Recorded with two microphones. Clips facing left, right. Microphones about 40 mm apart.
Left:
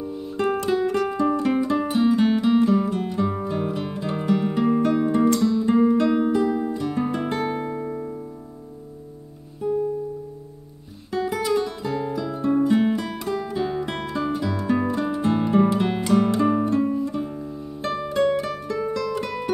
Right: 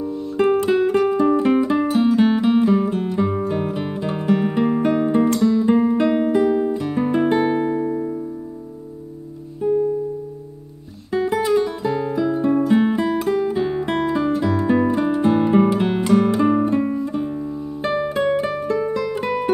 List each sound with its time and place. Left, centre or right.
0.4 s music: centre
6.8 s music: centre
7.9 s piano: centre
9.6 s music: centre
11.1 s guitar: centre
13.2 s music: centre